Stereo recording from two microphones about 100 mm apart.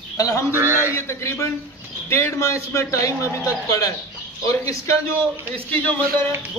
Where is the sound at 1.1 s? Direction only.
30° left (ahead or behind).